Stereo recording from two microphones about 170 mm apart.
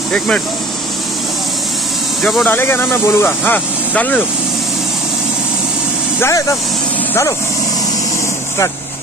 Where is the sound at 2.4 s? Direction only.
15° left (ahead or behind).